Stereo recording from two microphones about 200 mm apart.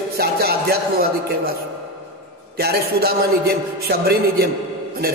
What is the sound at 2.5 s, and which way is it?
A man's voice, 50° right (ahead or behind).